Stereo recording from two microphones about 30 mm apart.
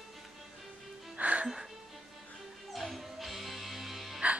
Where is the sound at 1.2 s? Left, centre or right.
Right.